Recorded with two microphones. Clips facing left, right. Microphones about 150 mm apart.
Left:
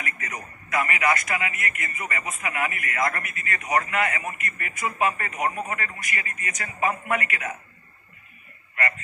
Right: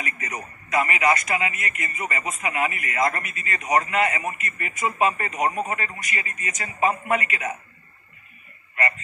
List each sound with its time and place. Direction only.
0.0 s a man's voice: 20° right (ahead or behind)